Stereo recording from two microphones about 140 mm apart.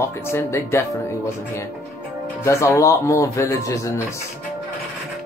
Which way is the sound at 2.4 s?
20° left (ahead or behind).